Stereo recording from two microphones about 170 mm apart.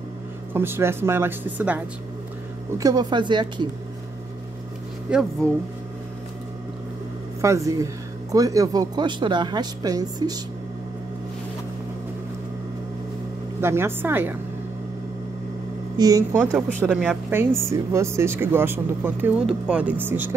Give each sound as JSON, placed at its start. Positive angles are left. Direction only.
{"t": 0.5, "sound": "speech", "side_deg": -15}
{"t": 2.8, "sound": "speech", "side_deg": -25}
{"t": 5.1, "sound": "speech", "side_deg": -5}
{"t": 7.4, "sound": "speech", "side_deg": -20}
{"t": 13.6, "sound": "speech", "side_deg": -15}
{"t": 16.0, "sound": "speech", "side_deg": -20}
{"t": 16.4, "sound": "speech", "side_deg": 5}
{"t": 16.8, "sound": "speech", "side_deg": -5}